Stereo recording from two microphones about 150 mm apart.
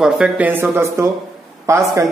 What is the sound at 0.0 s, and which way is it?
Speech, 10° right (ahead or behind).